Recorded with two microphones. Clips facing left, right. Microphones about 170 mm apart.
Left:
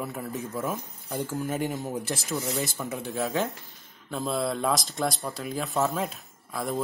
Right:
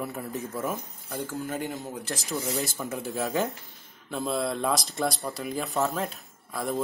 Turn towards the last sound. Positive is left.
turn(degrees=0)  # may be behind; listen again after turning